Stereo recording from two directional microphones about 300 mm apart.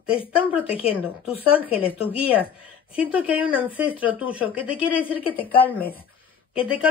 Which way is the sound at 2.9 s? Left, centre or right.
Centre.